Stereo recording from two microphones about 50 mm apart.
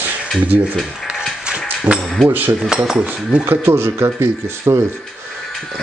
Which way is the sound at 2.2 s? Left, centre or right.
Right.